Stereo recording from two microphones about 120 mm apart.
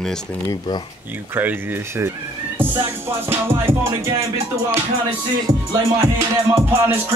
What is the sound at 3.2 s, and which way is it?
Music, 20° right (ahead or behind).